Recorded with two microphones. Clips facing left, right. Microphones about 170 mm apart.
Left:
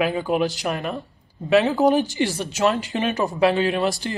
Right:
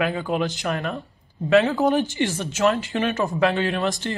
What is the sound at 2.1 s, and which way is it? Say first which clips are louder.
Speech: left 1 dB; 35° left (ahead or behind).